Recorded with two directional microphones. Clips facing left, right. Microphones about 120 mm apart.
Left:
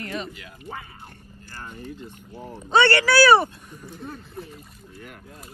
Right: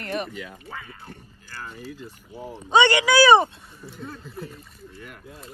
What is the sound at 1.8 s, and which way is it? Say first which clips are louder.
Speech: left 1 dB; 5° right (ahead or behind).